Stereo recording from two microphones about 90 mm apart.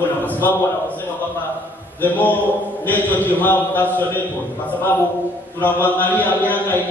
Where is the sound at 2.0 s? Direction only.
20° left (ahead or behind).